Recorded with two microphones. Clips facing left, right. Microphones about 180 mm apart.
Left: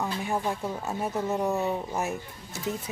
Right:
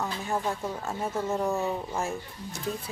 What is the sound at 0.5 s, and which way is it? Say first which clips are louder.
Speech: left 1 dB; 15° left (ahead or behind).